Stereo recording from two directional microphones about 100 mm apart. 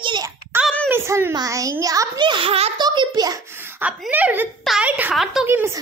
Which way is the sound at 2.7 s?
45° right (ahead or behind).